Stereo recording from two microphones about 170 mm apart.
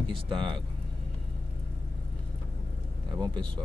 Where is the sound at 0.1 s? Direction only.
30° right (ahead or behind).